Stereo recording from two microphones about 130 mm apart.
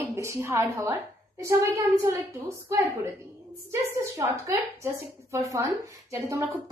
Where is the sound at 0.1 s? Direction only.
20° right (ahead or behind).